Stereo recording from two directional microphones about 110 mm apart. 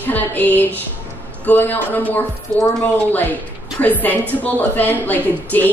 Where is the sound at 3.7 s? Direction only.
15° left (ahead or behind).